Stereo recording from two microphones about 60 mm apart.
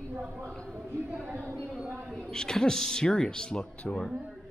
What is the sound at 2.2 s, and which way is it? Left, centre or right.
Speech, centre.